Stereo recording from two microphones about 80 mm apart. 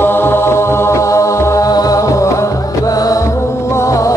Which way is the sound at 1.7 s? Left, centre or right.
Left.